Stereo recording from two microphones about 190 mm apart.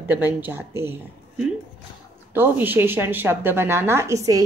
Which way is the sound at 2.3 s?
10° right (ahead or behind).